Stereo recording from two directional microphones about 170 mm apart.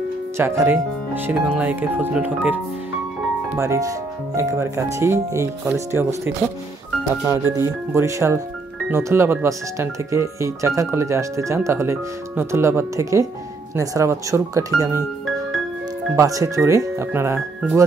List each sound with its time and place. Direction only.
0.4 s speech: 15° right (ahead or behind)
16.2 s speech: 20° right (ahead or behind)